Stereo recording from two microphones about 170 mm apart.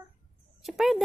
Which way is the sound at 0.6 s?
Centre (ahead or behind).